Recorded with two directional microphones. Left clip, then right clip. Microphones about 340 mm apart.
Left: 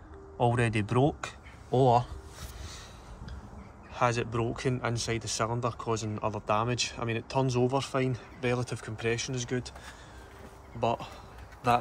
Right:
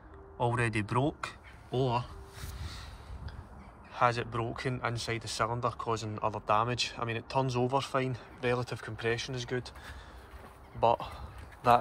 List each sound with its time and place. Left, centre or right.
0.4 s speech: centre
3.9 s speech: centre